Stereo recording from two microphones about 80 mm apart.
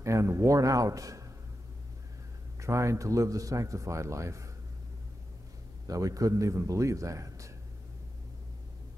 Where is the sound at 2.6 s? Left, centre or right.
Right.